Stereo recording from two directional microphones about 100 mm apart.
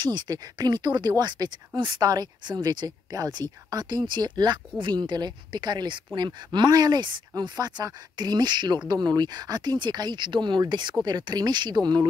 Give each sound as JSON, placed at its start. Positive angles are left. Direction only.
{"t": 0.0, "sound": "speech", "side_deg": -45}